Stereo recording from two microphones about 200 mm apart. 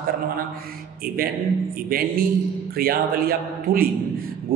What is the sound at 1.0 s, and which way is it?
Speech, 45° right (ahead or behind).